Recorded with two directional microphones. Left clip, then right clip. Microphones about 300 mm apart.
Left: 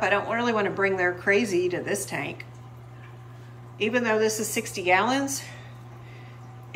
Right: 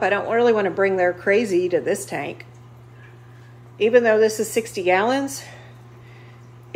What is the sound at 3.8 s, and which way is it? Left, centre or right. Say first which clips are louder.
Mantra: right 10 dB; centre.